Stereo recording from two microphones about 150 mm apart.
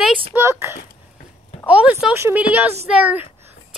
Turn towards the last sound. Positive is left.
turn(degrees=-10)  # may be behind; listen again after turning